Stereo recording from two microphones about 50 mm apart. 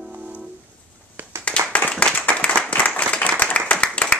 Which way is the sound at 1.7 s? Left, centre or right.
Left.